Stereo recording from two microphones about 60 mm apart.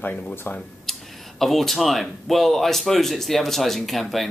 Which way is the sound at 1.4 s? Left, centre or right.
Centre.